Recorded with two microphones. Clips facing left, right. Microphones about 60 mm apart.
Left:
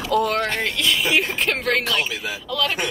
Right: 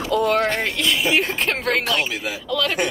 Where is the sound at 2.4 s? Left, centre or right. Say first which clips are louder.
Right 1 dB; centre.